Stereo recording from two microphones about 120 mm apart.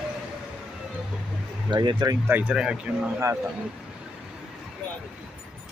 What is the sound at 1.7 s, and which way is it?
Speech, 40° right (ahead or behind).